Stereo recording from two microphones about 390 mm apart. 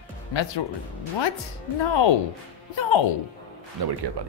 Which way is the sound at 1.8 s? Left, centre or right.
Left.